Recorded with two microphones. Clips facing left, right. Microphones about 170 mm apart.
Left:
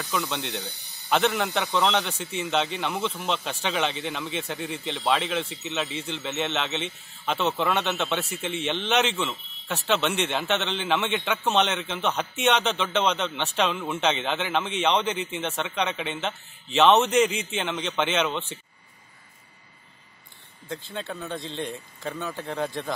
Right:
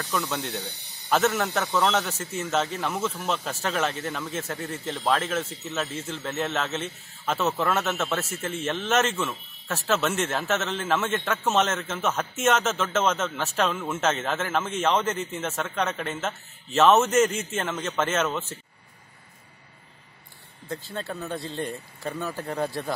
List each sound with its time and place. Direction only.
0.0 s speech: 10° left (ahead or behind)
0.3 s a man's voice: 10° right (ahead or behind)
5.5 s speech: 75° left (ahead or behind)
5.8 s a man's voice: centre (ahead or behind)
20.6 s speech: 5° right (ahead or behind)